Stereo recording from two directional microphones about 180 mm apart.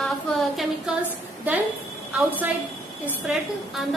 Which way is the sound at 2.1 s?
10° right (ahead or behind).